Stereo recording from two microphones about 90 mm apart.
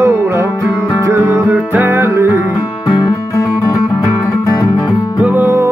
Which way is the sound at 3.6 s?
35° left (ahead or behind).